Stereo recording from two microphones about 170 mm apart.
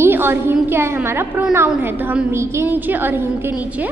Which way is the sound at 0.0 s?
15° right (ahead or behind).